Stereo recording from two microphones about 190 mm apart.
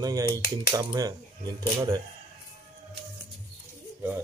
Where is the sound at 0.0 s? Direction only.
20° right (ahead or behind).